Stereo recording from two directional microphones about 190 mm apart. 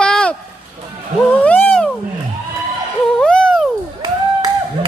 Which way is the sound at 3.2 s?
5° left (ahead or behind).